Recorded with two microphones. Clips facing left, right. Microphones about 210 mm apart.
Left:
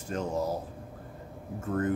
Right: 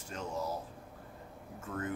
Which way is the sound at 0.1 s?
40° left (ahead or behind).